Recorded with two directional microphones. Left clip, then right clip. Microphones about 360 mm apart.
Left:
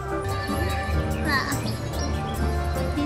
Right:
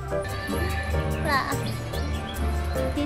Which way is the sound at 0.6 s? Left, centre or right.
Centre.